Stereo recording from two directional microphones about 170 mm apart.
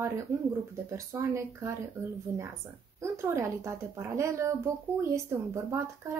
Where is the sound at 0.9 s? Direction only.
15° right (ahead or behind).